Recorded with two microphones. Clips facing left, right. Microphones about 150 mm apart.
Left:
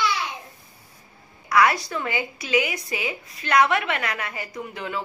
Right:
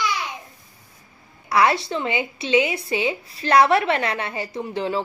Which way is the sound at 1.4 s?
25° right (ahead or behind).